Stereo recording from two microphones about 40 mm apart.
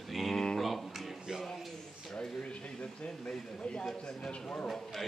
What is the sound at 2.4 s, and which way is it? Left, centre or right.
Speech, left.